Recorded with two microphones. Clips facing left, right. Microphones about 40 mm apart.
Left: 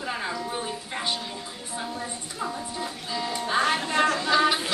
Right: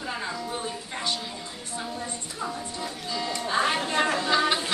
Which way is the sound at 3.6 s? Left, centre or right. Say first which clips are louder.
Left 1 dB; centre.